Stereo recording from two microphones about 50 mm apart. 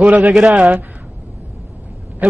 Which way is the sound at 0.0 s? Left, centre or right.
Right.